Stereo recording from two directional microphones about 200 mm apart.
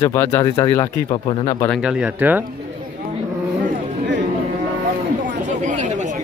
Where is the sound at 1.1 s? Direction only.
25° left (ahead or behind).